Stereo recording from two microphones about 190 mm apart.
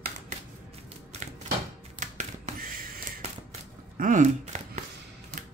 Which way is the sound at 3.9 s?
45° right (ahead or behind).